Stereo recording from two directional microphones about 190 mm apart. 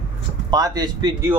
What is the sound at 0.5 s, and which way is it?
Speech, 20° right (ahead or behind).